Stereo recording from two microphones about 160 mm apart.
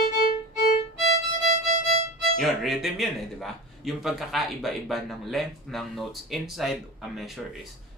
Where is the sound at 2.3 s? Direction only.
Centre (ahead or behind).